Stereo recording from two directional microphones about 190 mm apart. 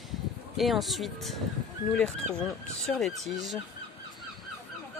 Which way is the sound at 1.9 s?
5° left (ahead or behind).